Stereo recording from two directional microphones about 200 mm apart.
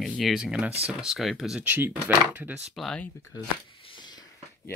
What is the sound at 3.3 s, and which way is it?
Speech, 20° left (ahead or behind).